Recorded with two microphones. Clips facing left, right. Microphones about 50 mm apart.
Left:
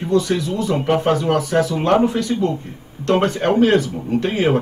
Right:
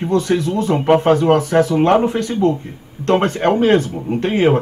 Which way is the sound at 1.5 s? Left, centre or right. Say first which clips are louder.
Right 3 dB; right.